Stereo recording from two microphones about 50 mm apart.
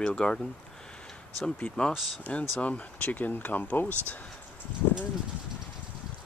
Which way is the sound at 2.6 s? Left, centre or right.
Left.